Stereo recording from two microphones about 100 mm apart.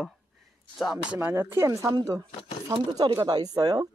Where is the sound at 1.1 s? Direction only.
25° right (ahead or behind).